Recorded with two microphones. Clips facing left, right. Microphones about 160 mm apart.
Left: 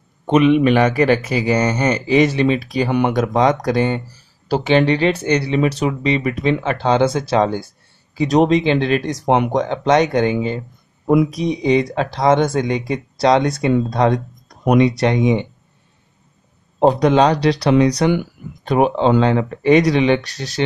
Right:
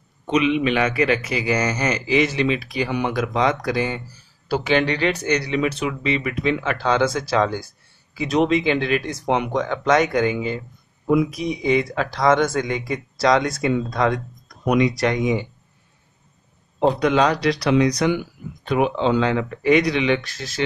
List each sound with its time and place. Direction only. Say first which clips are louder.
0.3 s a man's voice: left 6 dB; 50° left (ahead or behind)
2.9 s speech: left 7 dB; 55° left (ahead or behind)
3.2 s a man's voice: left 5 dB; 40° left (ahead or behind)
9.7 s a man's voice: left 1 dB; 25° left (ahead or behind)
16.8 s a man's voice: left 5 dB; 35° left (ahead or behind)